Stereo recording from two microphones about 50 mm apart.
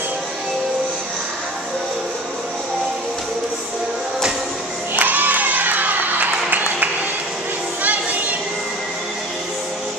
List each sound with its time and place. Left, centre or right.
4.9 s crowd: right
7.8 s music: right